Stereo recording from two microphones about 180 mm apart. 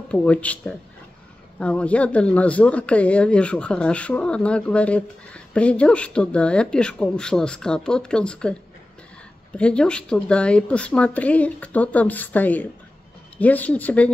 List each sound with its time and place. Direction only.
0.1 s speech: 5° left (ahead or behind)
9.6 s speech: 5° left (ahead or behind)